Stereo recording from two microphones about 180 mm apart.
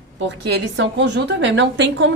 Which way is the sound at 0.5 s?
75° right (ahead or behind).